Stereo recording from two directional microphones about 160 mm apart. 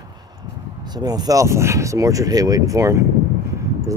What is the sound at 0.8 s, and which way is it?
Speech, 25° right (ahead or behind).